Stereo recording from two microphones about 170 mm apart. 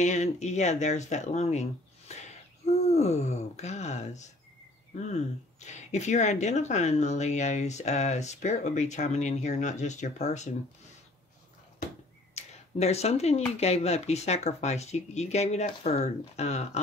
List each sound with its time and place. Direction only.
0.0 s speech: 45° left (ahead or behind)
12.4 s a sound: 40° left (ahead or behind)
13.6 s speech: 40° left (ahead or behind)